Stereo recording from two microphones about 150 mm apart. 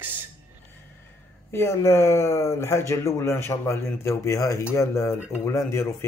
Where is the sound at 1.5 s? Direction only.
15° left (ahead or behind).